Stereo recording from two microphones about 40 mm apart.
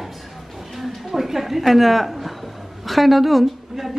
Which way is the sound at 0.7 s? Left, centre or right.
Centre.